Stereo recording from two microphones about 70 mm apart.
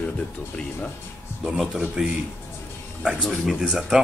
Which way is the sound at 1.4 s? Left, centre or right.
Centre.